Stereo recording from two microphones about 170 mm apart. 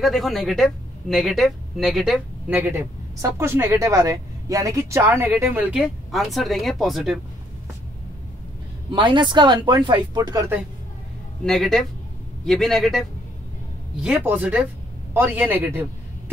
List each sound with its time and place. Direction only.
0.0 s speech: centre (ahead or behind)
8.9 s speech: 30° right (ahead or behind)
11.4 s speech: centre (ahead or behind)
14.0 s a man's voice: 10° right (ahead or behind)